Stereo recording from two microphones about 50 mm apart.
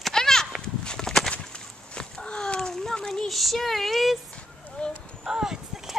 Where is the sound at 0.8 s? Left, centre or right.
Centre.